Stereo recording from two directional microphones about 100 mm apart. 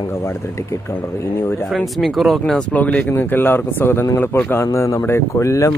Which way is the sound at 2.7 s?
15° left (ahead or behind).